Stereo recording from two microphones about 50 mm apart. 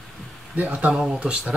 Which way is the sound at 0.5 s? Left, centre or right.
Right.